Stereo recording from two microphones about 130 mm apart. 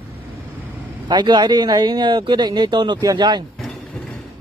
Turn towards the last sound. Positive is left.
turn(degrees=-35)  # may be behind; listen again after turning